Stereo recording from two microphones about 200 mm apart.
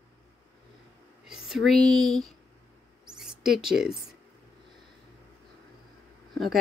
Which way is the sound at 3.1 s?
5° right (ahead or behind).